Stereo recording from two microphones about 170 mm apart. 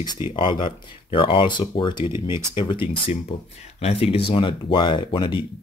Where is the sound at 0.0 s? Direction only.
25° left (ahead or behind).